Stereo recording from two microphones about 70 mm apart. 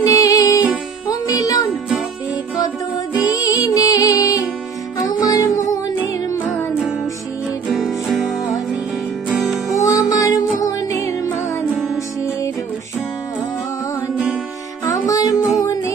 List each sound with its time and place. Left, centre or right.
0.0 s music: left
3.3 s music: left
7.7 s music: centre
9.8 s music: left
14.9 s music: left